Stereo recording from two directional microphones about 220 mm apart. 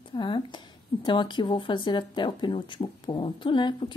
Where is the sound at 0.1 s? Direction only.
20° left (ahead or behind).